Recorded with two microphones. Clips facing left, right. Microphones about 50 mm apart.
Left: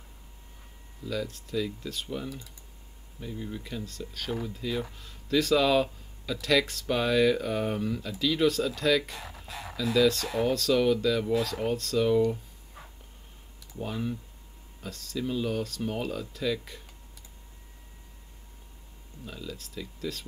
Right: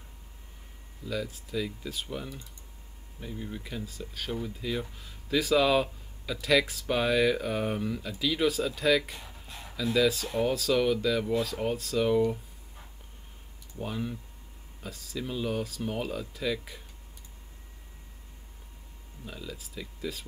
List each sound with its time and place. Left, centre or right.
1.0 s speech: centre
13.7 s speech: centre
19.2 s speech: centre